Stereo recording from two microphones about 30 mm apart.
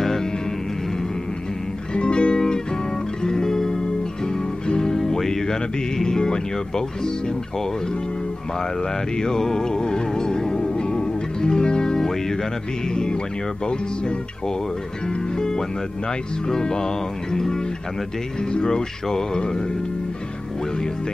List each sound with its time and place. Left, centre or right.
2.0 s music: left
3.3 s music: centre
4.9 s music: centre
9.2 s music: centre
15.3 s speech: left
16.4 s music: left